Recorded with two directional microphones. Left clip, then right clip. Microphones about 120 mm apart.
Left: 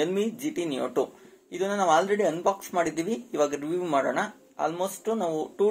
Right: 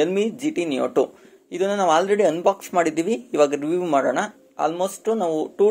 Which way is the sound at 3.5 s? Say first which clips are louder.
Right 6 dB; 55° right (ahead or behind).